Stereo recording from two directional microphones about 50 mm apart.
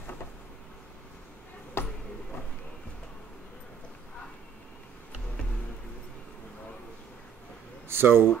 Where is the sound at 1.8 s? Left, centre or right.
Left.